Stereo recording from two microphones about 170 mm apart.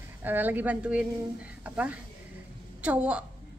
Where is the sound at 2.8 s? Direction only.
10° right (ahead or behind).